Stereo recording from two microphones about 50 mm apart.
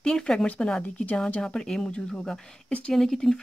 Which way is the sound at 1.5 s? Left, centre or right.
Centre.